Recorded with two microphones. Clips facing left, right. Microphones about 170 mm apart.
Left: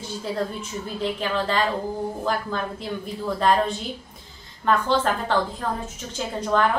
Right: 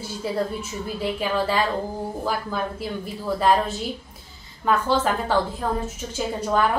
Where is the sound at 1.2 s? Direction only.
10° right (ahead or behind).